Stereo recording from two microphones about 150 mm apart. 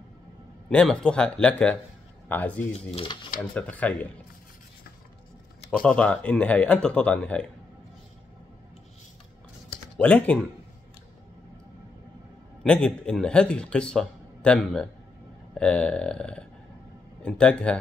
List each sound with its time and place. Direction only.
0.7 s speech: 5° left (ahead or behind)
2.9 s speech: 35° left (ahead or behind)
3.5 s speech: 10° left (ahead or behind)
5.7 s speech: 5° left (ahead or behind)
9.9 s speech: 10° left (ahead or behind)
12.6 s speech: 5° left (ahead or behind)